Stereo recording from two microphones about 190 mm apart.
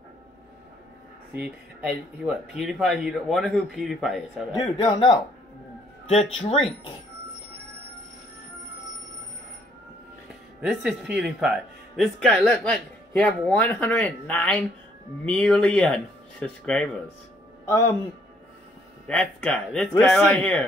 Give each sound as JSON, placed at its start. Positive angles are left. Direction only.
{"t": 1.4, "sound": "speech", "side_deg": -5}
{"t": 4.6, "sound": "speech", "side_deg": 20}
{"t": 6.4, "sound": "speech", "side_deg": 25}
{"t": 10.6, "sound": "speech", "side_deg": -5}
{"t": 17.6, "sound": "a man's voice", "side_deg": 15}
{"t": 19.0, "sound": "a man's voice", "side_deg": 5}